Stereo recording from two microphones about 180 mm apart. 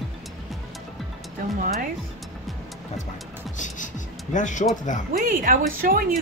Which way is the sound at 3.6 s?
45° left (ahead or behind).